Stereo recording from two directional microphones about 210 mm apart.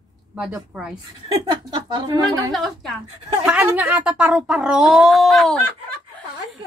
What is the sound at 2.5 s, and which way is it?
Speech, centre (ahead or behind).